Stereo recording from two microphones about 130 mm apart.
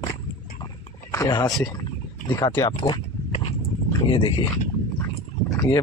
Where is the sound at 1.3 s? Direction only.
30° left (ahead or behind).